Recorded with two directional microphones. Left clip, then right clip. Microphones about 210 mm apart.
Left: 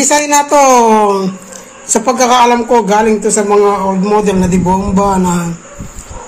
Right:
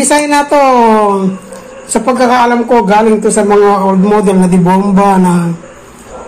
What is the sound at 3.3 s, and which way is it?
Speech, centre (ahead or behind).